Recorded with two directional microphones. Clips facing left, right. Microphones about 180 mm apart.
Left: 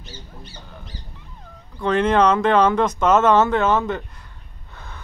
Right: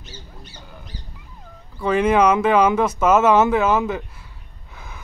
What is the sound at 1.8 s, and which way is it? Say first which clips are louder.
Speech: right 1 dB; 5° right (ahead or behind).